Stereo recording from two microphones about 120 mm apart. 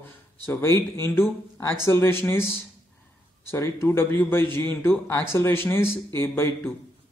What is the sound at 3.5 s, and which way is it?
A man's voice, 25° left (ahead or behind).